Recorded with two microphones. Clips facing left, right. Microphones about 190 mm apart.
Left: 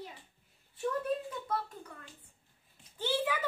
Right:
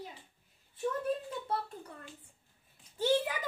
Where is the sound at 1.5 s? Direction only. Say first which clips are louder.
Even; 30° right (ahead or behind).